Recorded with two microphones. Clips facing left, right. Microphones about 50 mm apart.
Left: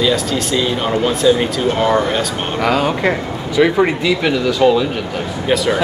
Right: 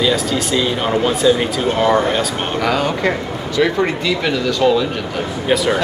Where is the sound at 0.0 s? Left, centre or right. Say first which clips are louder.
Left 1 dB; centre.